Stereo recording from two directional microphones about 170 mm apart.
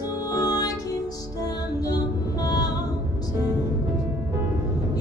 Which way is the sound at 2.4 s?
20° left (ahead or behind).